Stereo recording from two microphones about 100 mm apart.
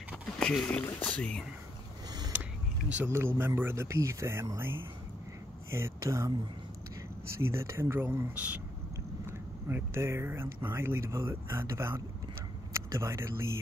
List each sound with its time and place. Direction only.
0.4 s speech: 10° left (ahead or behind)
3.1 s speech: 25° right (ahead or behind)
7.4 s speech: 25° right (ahead or behind)